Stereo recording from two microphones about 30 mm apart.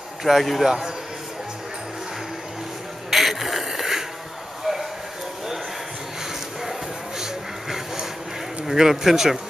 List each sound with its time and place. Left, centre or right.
0.3 s a man's voice: centre
3.1 s a sound: centre
7.7 s vehicle: centre
8.6 s speech: centre